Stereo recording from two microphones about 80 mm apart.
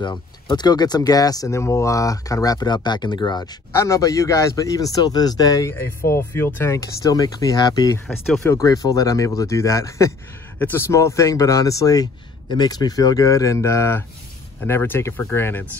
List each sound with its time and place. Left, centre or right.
0.0 s speech: left
3.7 s speech: left
4.9 s speech: left
5.7 s speech: left
12.4 s speech: left